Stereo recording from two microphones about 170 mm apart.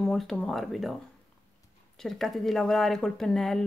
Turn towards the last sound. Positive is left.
turn(degrees=0)  # may be behind; listen again after turning